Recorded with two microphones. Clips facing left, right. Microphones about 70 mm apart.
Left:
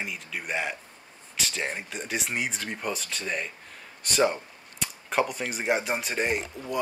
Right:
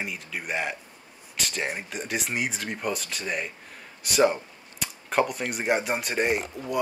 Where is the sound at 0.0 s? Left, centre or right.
Centre.